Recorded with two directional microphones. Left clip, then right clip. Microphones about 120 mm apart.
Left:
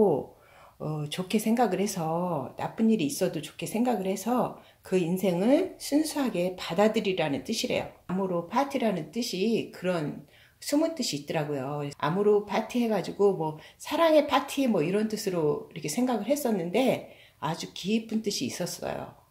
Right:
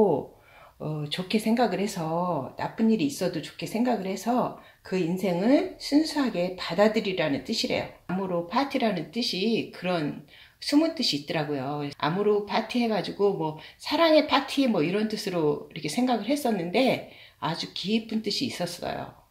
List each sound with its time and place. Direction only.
0.8 s speech: 25° left (ahead or behind)